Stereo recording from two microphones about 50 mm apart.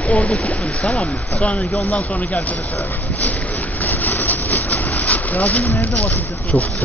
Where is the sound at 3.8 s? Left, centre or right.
Left.